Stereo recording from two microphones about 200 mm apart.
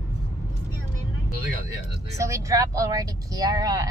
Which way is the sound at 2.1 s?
15° right (ahead or behind).